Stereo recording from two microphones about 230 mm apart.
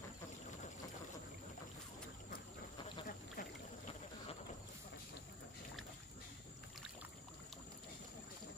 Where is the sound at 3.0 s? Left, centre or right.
Left.